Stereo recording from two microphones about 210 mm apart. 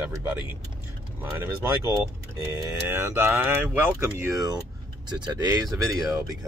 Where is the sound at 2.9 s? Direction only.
10° right (ahead or behind).